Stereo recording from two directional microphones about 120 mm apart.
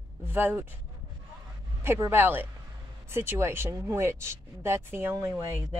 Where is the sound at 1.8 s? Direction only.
20° right (ahead or behind).